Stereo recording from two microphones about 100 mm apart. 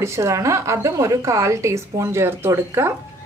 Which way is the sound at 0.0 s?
30° right (ahead or behind).